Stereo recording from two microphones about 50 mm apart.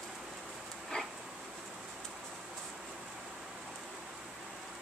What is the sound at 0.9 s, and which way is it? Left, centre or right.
Dog, centre.